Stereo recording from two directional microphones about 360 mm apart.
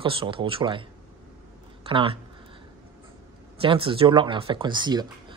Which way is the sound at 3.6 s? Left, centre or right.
Centre.